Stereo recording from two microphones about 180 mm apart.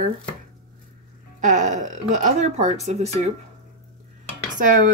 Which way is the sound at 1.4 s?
40° right (ahead or behind).